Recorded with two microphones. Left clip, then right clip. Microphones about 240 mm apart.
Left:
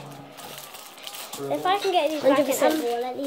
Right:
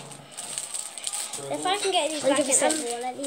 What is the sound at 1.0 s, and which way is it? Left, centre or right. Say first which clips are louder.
Speech: left 2 dB; centre.